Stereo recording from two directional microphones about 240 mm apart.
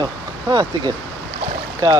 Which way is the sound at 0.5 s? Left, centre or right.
Centre.